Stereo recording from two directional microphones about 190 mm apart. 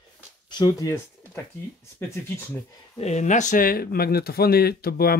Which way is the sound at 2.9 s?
35° left (ahead or behind).